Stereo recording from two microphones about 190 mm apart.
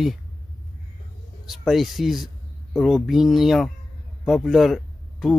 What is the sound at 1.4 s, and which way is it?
Speech, centre (ahead or behind).